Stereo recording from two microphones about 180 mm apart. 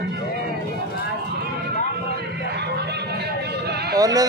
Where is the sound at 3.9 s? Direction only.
20° right (ahead or behind).